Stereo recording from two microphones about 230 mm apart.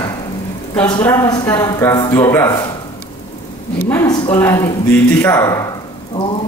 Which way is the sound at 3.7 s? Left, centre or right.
Centre.